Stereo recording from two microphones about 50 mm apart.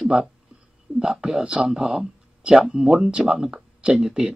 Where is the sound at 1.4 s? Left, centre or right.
Centre.